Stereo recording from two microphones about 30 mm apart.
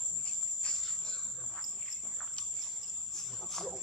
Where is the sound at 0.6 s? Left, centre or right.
Left.